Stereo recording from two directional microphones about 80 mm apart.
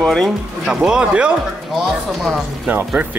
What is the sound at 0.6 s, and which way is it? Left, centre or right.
Speech, centre.